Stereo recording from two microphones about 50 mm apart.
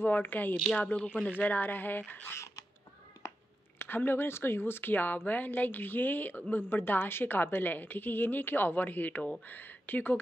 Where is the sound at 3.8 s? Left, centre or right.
Left.